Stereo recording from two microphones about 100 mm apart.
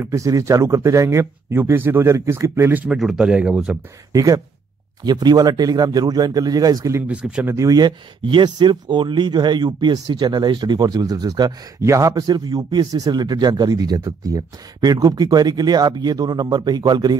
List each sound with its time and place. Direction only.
0.0 s speech: 30° right (ahead or behind)
2.9 s speech: 5° right (ahead or behind)
4.1 s speech: 35° right (ahead or behind)
7.1 s speech: 10° right (ahead or behind)
7.4 s speech: 35° right (ahead or behind)
8.3 s speech: 55° right (ahead or behind)